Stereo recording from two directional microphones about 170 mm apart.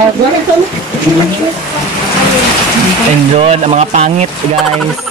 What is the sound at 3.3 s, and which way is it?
Speech, 40° right (ahead or behind).